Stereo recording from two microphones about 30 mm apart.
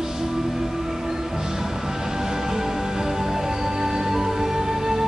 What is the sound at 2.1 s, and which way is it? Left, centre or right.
Music, centre.